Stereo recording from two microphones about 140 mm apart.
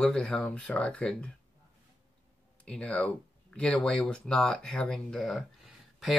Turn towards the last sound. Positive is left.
turn(degrees=0)  # may be behind; listen again after turning